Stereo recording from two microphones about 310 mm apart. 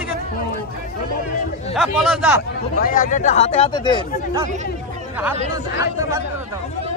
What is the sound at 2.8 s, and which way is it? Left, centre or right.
Speech, left.